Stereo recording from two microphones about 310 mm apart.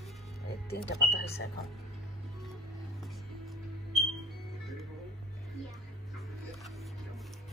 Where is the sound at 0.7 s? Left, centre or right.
Left.